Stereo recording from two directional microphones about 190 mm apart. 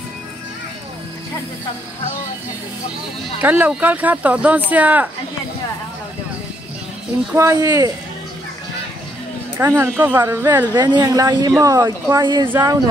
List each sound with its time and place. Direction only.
3.3 s speech: 10° right (ahead or behind)
7.6 s speech: 15° right (ahead or behind)
9.6 s speech: 10° right (ahead or behind)